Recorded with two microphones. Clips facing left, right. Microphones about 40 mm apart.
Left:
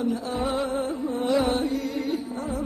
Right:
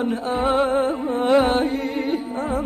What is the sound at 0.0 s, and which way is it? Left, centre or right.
Carnatic music, right.